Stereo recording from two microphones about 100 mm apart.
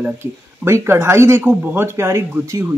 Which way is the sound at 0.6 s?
25° right (ahead or behind).